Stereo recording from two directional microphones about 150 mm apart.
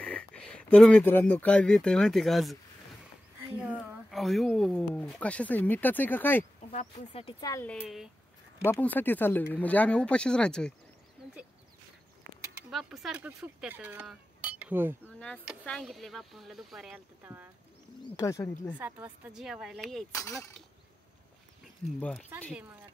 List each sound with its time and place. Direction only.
0.0 s speech: 5° left (ahead or behind)
3.5 s speech: 10° right (ahead or behind); by 6.4 s 15° left (ahead or behind)
6.7 s speech: 45° left (ahead or behind)
7.3 s speech: 25° left (ahead or behind)
8.6 s speech: 15° left (ahead or behind)
12.6 s speech: centre (ahead or behind)
15.1 s speech: 5° left (ahead or behind); by 17.5 s 15° right (ahead or behind)
18.1 s speech: 20° left (ahead or behind)
18.8 s speech: 10° right (ahead or behind)
20.1 s speech: 20° left (ahead or behind)